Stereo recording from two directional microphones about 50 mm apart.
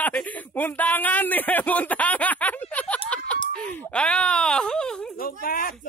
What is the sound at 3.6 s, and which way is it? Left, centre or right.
Groan, left.